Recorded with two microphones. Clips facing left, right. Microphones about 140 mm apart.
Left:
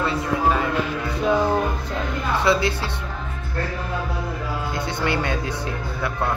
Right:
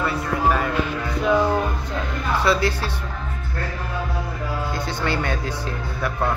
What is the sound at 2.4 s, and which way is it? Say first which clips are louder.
Speech: even; 25° left (ahead or behind).